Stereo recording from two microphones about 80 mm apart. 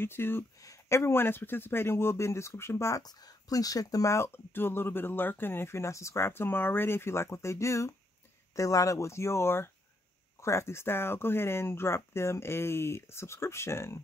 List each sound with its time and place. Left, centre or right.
0.0 s speech: left
0.6 s speech: left
3.0 s speech: left